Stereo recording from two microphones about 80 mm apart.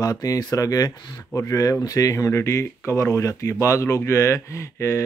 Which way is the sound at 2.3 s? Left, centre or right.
Left.